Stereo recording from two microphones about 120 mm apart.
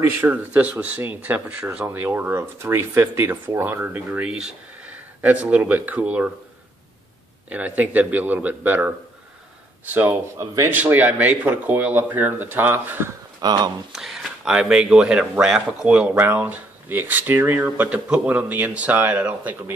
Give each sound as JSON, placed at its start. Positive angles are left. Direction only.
{"t": 0.0, "sound": "speech", "side_deg": -20}
{"t": 7.4, "sound": "speech", "side_deg": -15}
{"t": 10.7, "sound": "speech", "side_deg": -15}
{"t": 13.4, "sound": "speech", "side_deg": -35}
{"t": 13.9, "sound": "speech", "side_deg": -5}